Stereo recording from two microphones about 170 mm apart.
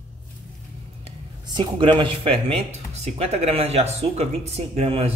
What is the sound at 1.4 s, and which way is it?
Speech, 25° right (ahead or behind).